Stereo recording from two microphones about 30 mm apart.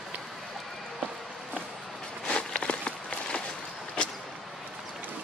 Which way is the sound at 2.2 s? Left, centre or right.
Left.